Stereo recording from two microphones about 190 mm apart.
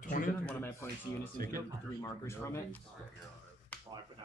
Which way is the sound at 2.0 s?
15° left (ahead or behind).